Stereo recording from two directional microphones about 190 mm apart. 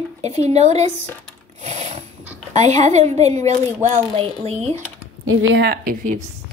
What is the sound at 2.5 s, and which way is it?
A woman's voice, 35° right (ahead or behind).